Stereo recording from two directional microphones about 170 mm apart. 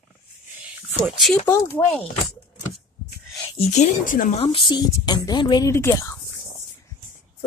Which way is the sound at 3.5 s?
40° left (ahead or behind).